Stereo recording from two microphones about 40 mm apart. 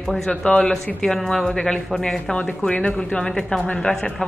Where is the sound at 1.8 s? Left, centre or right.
Centre.